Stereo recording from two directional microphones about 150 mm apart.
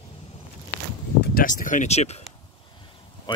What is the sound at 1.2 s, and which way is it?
Speech, 70° left (ahead or behind).